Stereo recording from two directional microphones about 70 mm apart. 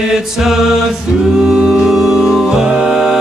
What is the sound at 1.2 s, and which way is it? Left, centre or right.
Music, centre.